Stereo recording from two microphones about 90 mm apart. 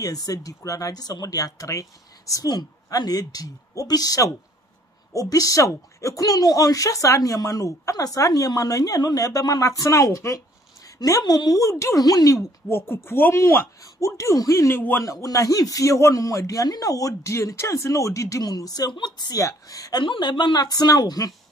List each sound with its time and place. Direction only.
0.0 s speech: 40° left (ahead or behind)
2.5 s speech: 50° left (ahead or behind)
12.6 s speech: 25° left (ahead or behind)
14.8 s speech: 20° left (ahead or behind)
15.0 s speech: 40° left (ahead or behind)
19.4 s speech: 40° left (ahead or behind)
20.0 s speech: 55° left (ahead or behind)